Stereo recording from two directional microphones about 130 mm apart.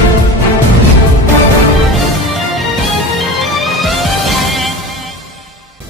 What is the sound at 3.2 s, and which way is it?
Music, centre (ahead or behind).